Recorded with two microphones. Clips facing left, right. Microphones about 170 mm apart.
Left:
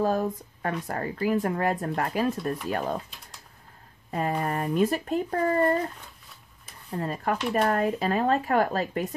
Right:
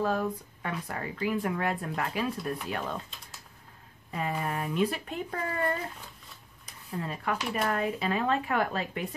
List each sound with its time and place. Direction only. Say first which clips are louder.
0.0 s speech: left 4 dB; 40° left (ahead or behind)
4.1 s speech: left 5 dB; 45° left (ahead or behind)
6.9 s speech: left 4 dB; 45° left (ahead or behind)